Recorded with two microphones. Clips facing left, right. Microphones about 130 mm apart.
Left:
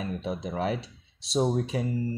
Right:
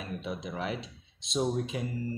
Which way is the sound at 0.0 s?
35° left (ahead or behind).